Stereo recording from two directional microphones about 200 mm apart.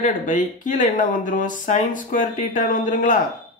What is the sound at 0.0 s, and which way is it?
Speech, 40° left (ahead or behind).